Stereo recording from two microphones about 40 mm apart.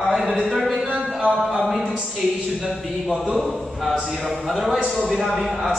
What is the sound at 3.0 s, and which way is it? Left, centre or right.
A man's voice, centre.